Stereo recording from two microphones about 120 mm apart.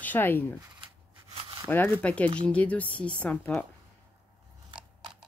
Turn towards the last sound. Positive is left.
turn(degrees=10)  # may be behind; listen again after turning